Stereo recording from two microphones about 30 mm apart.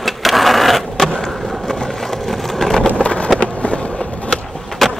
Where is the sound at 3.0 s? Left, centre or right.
Left.